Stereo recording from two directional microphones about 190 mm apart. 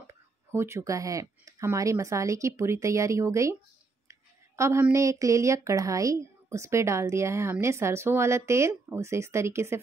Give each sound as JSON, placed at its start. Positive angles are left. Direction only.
{"t": 0.0, "sound": "a woman's voice", "side_deg": -15}